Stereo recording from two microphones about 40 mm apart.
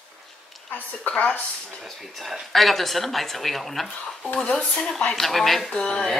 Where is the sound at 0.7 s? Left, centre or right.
Left.